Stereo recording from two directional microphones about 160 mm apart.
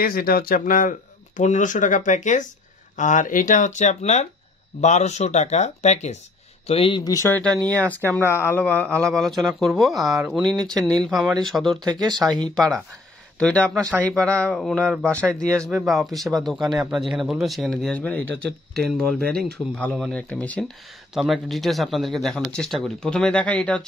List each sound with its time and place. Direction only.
0.0 s speech: 65° left (ahead or behind); by 7.0 s 35° left (ahead or behind)
7.1 s speech: 15° left (ahead or behind)
11.8 s speech: 25° right (ahead or behind)
13.4 s speech: 10° left (ahead or behind)